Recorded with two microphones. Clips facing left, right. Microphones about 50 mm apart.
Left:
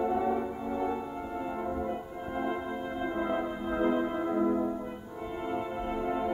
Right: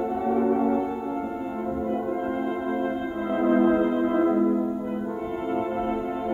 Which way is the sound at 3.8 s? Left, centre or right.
Centre.